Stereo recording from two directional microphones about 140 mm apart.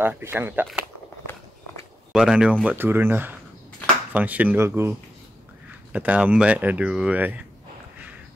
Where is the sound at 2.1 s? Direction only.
5° right (ahead or behind).